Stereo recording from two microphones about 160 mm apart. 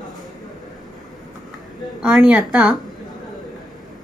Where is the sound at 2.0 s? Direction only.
5° right (ahead or behind).